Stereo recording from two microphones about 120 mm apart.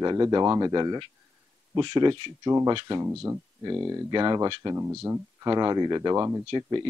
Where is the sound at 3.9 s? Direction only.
35° right (ahead or behind).